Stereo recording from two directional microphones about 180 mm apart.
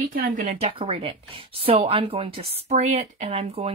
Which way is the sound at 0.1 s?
45° right (ahead or behind).